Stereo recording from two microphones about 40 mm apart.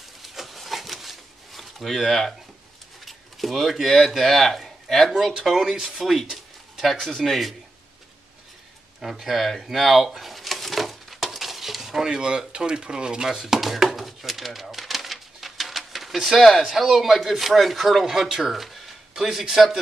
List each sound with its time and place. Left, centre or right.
0.2 s a sound: centre
3.1 s speech: centre
5.6 s speech: centre
6.3 s speech: centre
9.0 s a sound: centre
12.1 s speech: centre
13.6 s a sound: centre
16.3 s speech: centre
16.6 s speech: centre